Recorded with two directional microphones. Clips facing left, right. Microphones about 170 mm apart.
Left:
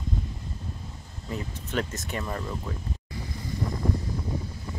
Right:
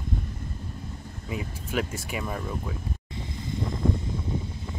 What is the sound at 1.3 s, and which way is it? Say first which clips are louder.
Speech: right 1 dB; 10° right (ahead or behind).